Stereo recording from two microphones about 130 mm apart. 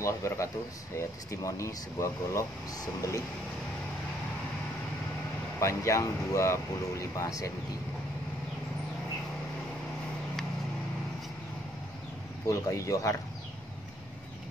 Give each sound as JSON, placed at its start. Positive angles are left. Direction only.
{"t": 0.0, "sound": "speech", "side_deg": 25}
{"t": 5.6, "sound": "speech", "side_deg": 25}
{"t": 12.4, "sound": "speech", "side_deg": 25}